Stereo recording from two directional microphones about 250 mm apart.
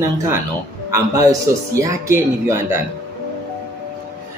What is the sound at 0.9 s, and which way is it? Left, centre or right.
Speech, centre.